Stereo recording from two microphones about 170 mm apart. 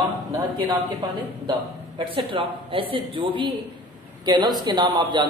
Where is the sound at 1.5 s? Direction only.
30° right (ahead or behind).